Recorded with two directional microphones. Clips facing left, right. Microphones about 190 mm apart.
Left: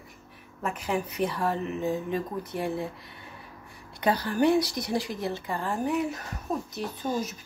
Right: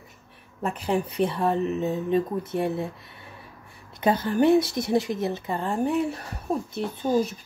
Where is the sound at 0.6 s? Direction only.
30° right (ahead or behind).